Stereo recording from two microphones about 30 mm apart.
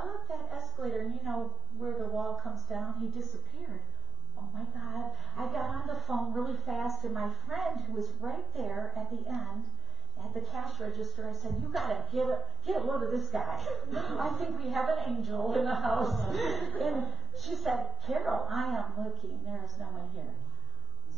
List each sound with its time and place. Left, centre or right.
0.0 s a sound: centre
1.8 s speech: centre
2.1 s a woman's voice: centre
4.7 s a woman's voice: centre